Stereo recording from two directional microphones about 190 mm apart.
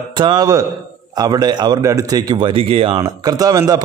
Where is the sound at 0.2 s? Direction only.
20° right (ahead or behind).